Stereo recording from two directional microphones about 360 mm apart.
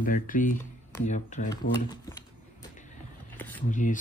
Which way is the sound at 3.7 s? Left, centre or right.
Left.